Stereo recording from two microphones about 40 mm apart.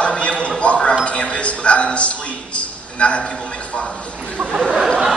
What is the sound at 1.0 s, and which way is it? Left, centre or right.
A man's voice, left.